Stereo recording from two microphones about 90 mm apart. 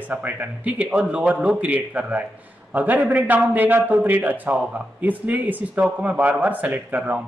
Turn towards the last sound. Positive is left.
turn(degrees=-15)  # may be behind; listen again after turning